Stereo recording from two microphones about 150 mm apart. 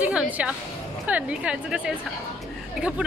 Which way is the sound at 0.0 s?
10° right (ahead or behind).